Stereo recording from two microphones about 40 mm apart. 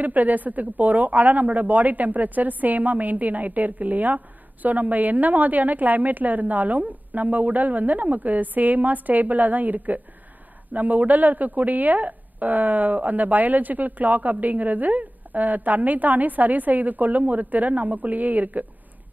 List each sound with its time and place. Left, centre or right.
0.0 s speech: right